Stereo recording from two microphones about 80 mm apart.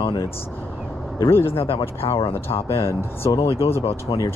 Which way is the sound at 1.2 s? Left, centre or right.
Left.